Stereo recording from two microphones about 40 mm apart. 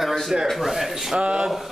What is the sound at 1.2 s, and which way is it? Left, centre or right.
Speech, right.